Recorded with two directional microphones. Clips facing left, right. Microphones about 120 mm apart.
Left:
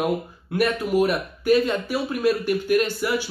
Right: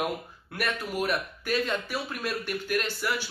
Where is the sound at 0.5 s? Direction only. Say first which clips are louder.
Left 10 dB; 15° left (ahead or behind).